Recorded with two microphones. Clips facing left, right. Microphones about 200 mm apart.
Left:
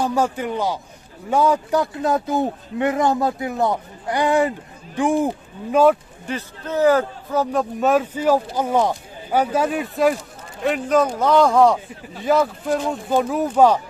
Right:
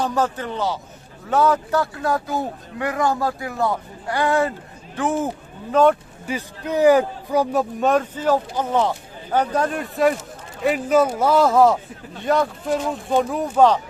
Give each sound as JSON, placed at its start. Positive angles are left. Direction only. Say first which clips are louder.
{"t": 0.0, "sound": "speech", "louder": "left 2 dB", "side_deg": 10}
{"t": 6.2, "sound": "a man's voice", "louder": "right 1 dB", "side_deg": -10}
{"t": 7.8, "sound": "speech", "louder": "left 3 dB", "side_deg": 5}